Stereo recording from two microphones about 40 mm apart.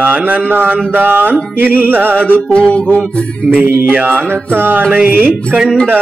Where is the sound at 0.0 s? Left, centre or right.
Right.